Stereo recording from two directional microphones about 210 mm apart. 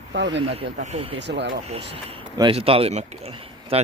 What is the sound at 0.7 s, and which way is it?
Speech, 30° right (ahead or behind).